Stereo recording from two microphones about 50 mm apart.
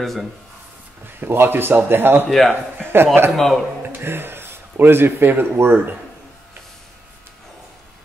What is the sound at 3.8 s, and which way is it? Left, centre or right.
Speech, right.